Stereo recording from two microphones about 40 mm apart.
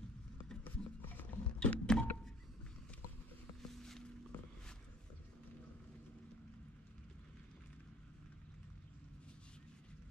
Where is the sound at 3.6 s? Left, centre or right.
Centre.